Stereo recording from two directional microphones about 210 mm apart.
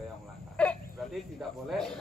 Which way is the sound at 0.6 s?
5° left (ahead or behind).